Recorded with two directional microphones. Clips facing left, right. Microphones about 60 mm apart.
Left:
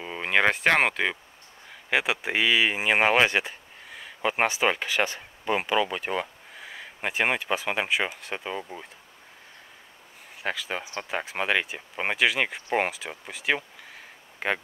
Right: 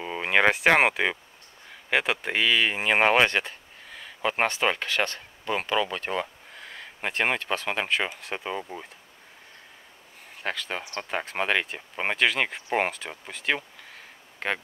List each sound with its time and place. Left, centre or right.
0.0 s speech: centre
1.9 s speech: centre
10.4 s speech: centre